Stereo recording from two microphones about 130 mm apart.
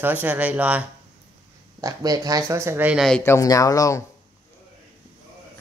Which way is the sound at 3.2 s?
25° left (ahead or behind).